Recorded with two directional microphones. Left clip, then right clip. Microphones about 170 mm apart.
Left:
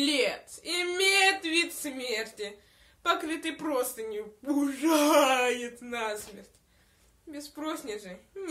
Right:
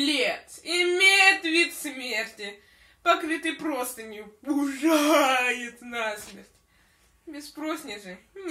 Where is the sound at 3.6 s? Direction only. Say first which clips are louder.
Even; 40° left (ahead or behind).